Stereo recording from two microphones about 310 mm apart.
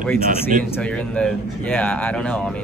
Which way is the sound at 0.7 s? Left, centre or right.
Centre.